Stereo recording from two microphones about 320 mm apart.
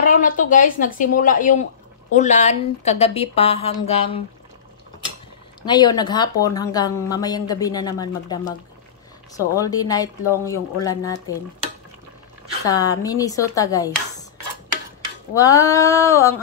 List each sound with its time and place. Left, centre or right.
0.0 s speech: left
5.6 s speech: centre
12.6 s speech: centre
15.3 s speech: centre